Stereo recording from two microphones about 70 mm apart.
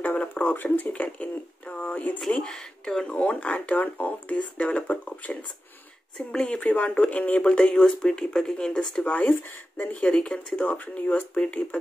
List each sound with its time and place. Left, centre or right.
0.0 s speech: left
2.2 s speech: centre
6.1 s speech: centre
6.6 s speech: left
9.3 s speech: left
9.9 s speech: centre